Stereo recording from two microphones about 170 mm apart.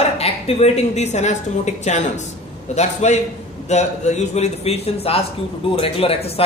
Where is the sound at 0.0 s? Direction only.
40° left (ahead or behind).